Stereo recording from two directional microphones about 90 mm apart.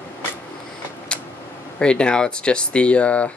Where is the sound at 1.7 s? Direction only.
10° left (ahead or behind).